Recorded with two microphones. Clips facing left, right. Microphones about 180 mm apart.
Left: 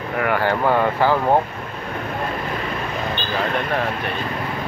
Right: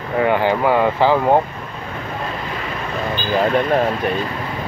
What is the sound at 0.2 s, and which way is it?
Speech, 20° right (ahead or behind).